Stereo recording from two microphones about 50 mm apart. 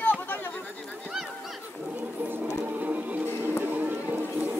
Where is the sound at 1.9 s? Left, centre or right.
Right.